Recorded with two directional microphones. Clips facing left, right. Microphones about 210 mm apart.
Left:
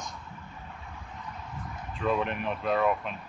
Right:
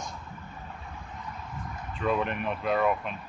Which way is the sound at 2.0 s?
Centre (ahead or behind).